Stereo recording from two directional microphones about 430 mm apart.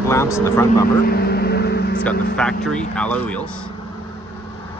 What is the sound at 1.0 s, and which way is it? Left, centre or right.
Vehicle, left.